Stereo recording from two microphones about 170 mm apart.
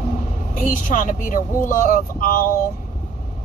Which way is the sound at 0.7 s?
50° left (ahead or behind).